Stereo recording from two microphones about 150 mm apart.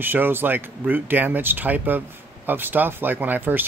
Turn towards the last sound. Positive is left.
turn(degrees=-10)  # may be behind; listen again after turning